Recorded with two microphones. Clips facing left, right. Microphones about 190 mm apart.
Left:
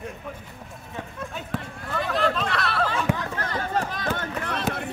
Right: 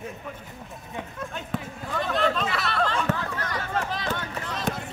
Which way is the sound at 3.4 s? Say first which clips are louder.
Left 2 dB; 50° left (ahead or behind).